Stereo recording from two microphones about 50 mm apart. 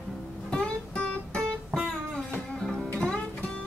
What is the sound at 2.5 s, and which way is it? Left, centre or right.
Music, centre.